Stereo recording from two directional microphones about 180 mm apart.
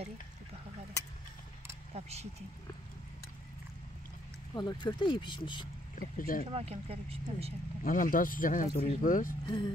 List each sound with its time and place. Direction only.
2.0 s speech: 35° right (ahead or behind)
4.6 s speech: 25° left (ahead or behind)
5.9 s speech: 50° left (ahead or behind)
6.5 s speech: 35° right (ahead or behind)
7.8 s speech: 50° left (ahead or behind)
9.5 s speech: 25° left (ahead or behind)